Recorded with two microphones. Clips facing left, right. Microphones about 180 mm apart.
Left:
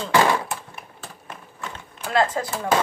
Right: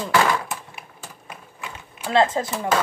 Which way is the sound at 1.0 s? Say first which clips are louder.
Left 2 dB; 10° right (ahead or behind).